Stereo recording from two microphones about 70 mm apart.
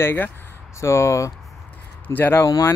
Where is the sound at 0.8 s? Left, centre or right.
Left.